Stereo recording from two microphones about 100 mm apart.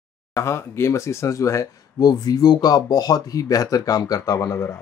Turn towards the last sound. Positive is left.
turn(degrees=35)  # may be behind; listen again after turning